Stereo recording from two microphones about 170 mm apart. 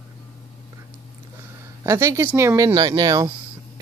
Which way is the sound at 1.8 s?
15° right (ahead or behind).